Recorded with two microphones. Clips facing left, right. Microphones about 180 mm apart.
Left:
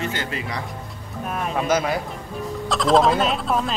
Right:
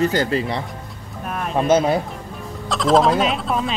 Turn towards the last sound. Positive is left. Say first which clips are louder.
# right 1 dB
turn(degrees=0)  # may be behind; listen again after turning